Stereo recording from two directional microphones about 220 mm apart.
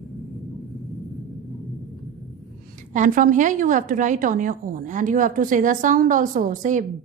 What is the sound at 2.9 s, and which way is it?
A woman's voice, 35° right (ahead or behind).